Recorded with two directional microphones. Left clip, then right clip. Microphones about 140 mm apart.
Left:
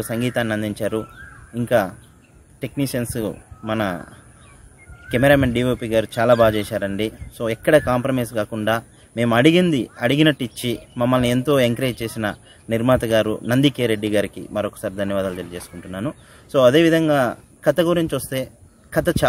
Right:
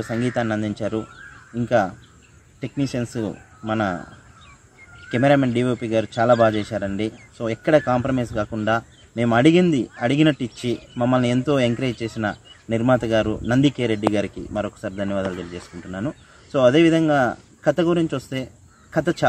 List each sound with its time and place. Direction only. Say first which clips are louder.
0.0 s speech: left 1 dB; 40° left (ahead or behind)
5.1 s speech: left 2 dB; 35° left (ahead or behind)